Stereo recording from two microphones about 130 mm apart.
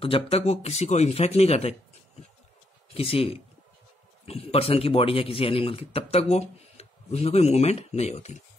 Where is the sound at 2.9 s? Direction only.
45° left (ahead or behind).